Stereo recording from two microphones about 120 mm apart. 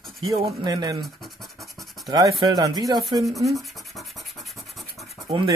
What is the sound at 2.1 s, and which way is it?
Speech, 30° right (ahead or behind).